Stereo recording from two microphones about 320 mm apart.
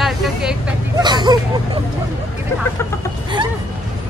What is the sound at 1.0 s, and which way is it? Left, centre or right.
Speech, centre.